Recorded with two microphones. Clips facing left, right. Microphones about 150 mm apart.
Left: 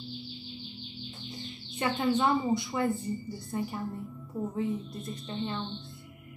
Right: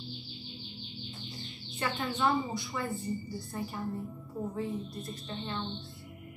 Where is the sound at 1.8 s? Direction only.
20° left (ahead or behind).